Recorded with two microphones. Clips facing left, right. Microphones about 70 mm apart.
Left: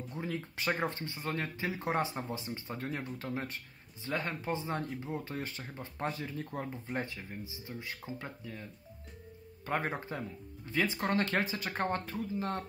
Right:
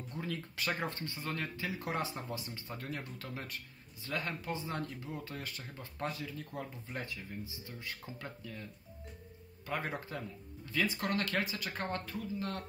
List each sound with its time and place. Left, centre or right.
0.1 s speech: left
9.7 s speech: left